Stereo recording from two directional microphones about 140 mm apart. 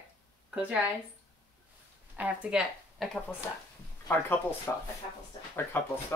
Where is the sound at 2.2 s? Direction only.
5° right (ahead or behind).